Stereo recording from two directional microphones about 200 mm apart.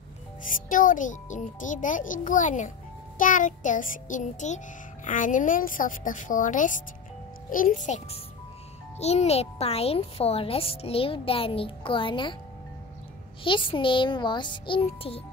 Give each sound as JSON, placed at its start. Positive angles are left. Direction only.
{"t": 0.4, "sound": "a child's voice", "side_deg": 40}
{"t": 13.4, "sound": "a child's voice", "side_deg": 25}